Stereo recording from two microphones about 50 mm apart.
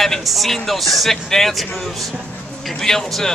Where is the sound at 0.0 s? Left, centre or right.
Centre.